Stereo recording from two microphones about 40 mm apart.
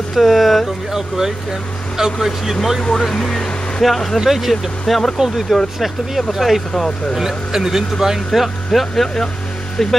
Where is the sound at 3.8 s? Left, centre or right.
Centre.